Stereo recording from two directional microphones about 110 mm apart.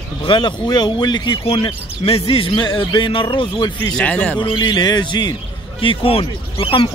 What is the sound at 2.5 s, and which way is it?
Speech, 40° left (ahead or behind).